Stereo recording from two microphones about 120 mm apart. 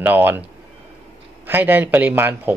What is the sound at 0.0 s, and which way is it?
Speech, 15° right (ahead or behind).